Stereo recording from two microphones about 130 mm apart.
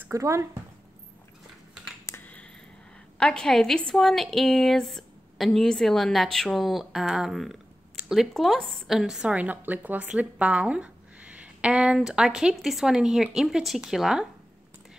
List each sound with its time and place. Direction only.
0.1 s speech: 25° right (ahead or behind)
2.0 s finger snapping: 15° left (ahead or behind)
3.2 s a woman's voice: 5° left (ahead or behind)